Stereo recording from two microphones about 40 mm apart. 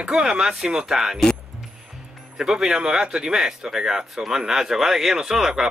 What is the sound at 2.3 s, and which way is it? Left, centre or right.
Speech, centre.